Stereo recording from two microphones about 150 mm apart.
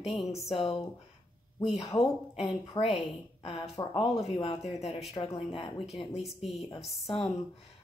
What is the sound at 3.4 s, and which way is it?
Speech, 45° left (ahead or behind).